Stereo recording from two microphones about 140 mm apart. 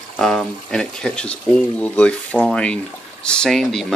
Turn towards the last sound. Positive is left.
turn(degrees=0)  # may be behind; listen again after turning